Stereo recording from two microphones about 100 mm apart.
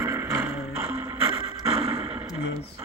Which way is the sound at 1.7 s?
90° right.